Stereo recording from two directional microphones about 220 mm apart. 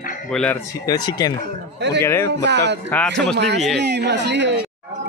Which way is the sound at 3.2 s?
50° right (ahead or behind).